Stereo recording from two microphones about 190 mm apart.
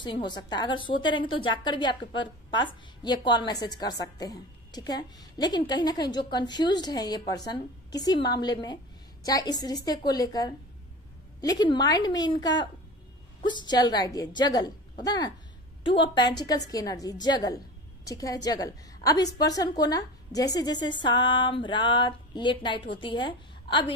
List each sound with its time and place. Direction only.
0.0 s a woman's voice: 25° left (ahead or behind)